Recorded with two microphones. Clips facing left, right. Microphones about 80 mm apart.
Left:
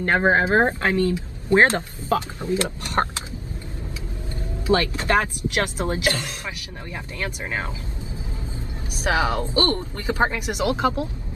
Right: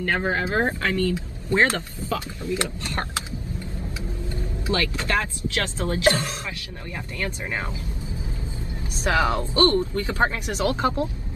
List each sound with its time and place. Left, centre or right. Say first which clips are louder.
0.0 s speech: left 5 dB; left
4.6 s speech: left 5 dB; left
6.0 s speech: right 4 dB; right
7.2 s speech: left 1 dB; left
9.0 s speech: even; left